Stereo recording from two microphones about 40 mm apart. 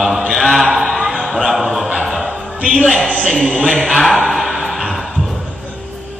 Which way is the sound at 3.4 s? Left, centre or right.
Right.